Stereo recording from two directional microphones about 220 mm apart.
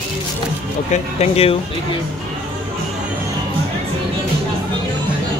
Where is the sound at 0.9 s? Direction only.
30° left (ahead or behind).